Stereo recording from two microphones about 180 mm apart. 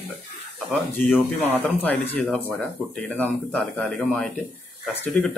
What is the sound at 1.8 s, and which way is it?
Speech, 10° left (ahead or behind).